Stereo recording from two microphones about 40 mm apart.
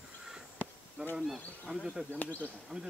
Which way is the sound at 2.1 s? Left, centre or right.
Left.